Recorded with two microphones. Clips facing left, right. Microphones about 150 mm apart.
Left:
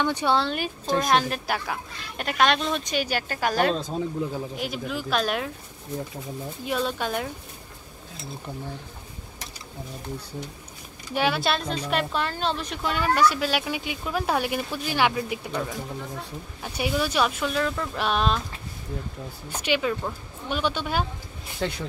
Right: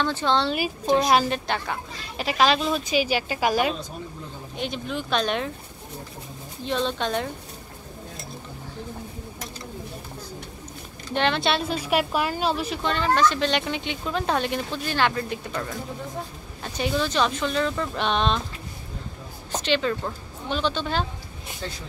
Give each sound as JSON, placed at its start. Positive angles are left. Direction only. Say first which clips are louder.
{"t": 0.0, "sound": "a woman's voice", "louder": "even", "side_deg": 15}
{"t": 0.4, "sound": "speech", "louder": "right 2 dB", "side_deg": 0}
{"t": 4.6, "sound": "speech", "louder": "right 1 dB", "side_deg": 5}
{"t": 6.6, "sound": "a woman's voice", "louder": "right 2 dB", "side_deg": 10}
{"t": 11.1, "sound": "a woman's voice", "louder": "right 1 dB", "side_deg": 5}
{"t": 16.6, "sound": "speech", "louder": "right 1 dB", "side_deg": 10}
{"t": 19.5, "sound": "a woman's voice", "louder": "right 1 dB", "side_deg": 10}
{"t": 21.5, "sound": "speech", "louder": "left 7 dB", "side_deg": 65}